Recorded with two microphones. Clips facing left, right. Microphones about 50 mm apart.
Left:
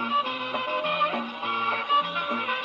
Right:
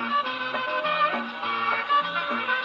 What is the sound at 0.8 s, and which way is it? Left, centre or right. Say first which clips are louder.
Music: right 2 dB; right.